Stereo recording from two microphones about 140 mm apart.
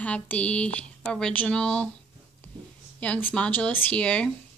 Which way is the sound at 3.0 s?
10° left (ahead or behind).